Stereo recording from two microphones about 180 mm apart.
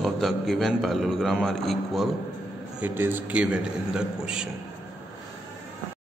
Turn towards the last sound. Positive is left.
turn(degrees=-5)  # may be behind; listen again after turning